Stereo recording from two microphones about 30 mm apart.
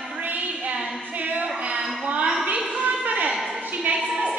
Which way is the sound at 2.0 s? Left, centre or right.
Right.